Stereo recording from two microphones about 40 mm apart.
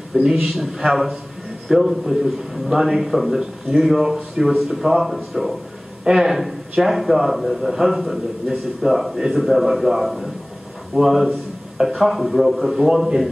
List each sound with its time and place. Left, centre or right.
0.1 s a man's voice: centre
11.0 s speech: centre
12.8 s speech: centre